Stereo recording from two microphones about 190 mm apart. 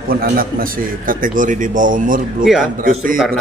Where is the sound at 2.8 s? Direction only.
45° right (ahead or behind).